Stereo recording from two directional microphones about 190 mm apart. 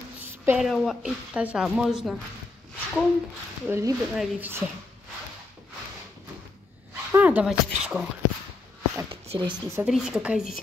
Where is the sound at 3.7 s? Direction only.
15° right (ahead or behind).